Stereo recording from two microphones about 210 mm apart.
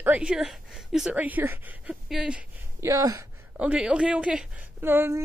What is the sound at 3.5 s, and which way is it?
Speech, 5° right (ahead or behind).